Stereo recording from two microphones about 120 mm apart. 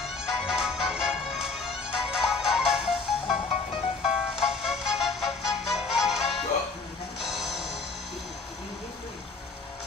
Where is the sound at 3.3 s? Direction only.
55° left (ahead or behind).